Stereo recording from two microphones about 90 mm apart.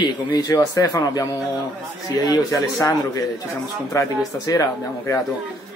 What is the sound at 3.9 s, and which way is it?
Speech, 35° left (ahead or behind).